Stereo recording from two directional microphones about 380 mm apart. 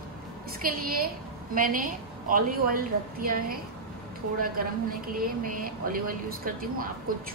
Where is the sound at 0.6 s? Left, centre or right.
Right.